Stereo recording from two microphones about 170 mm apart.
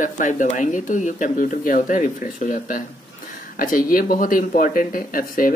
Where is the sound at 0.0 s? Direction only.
50° left (ahead or behind).